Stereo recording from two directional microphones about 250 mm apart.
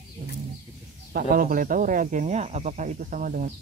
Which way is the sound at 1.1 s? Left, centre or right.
Right.